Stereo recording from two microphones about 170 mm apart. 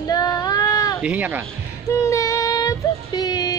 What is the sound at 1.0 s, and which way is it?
Speech, 10° right (ahead or behind).